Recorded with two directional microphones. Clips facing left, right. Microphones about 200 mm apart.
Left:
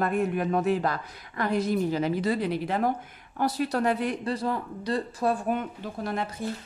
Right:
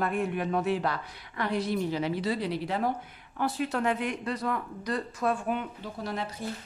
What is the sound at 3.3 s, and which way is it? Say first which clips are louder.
Speech: left 3 dB; 40° left (ahead or behind).